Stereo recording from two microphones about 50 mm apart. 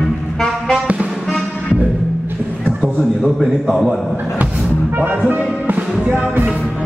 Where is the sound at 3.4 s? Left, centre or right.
Centre.